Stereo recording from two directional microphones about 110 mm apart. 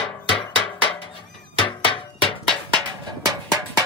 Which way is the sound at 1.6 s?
55° left (ahead or behind).